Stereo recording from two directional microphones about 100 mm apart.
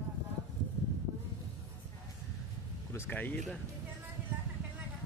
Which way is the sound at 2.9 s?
20° left (ahead or behind).